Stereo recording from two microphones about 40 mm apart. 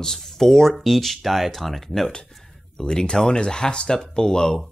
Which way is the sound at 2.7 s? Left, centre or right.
Centre.